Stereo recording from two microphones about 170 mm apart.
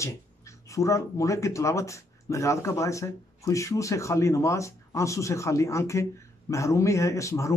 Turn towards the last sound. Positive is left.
turn(degrees=20)  # may be behind; listen again after turning